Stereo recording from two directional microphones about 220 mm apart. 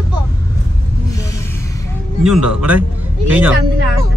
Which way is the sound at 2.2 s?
5° right (ahead or behind).